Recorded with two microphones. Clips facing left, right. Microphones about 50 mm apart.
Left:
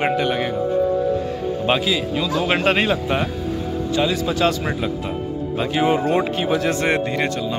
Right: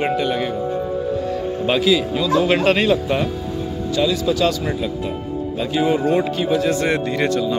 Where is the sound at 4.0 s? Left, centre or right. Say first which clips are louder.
Right 2 dB; left.